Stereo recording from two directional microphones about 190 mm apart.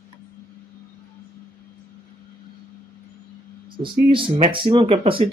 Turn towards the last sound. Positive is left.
turn(degrees=-30)  # may be behind; listen again after turning